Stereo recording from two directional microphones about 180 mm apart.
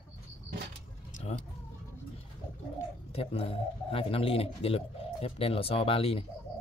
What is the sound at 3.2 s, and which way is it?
Speech, 30° left (ahead or behind).